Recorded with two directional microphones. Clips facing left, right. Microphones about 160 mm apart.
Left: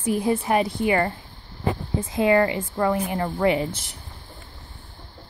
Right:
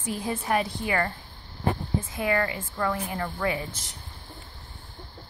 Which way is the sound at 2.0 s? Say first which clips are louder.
Left 10 dB; 20° left (ahead or behind).